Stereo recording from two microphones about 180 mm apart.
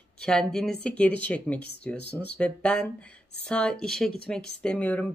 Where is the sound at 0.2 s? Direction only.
5° left (ahead or behind).